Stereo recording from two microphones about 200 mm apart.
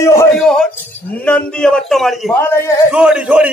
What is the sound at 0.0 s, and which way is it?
Music, 15° left (ahead or behind).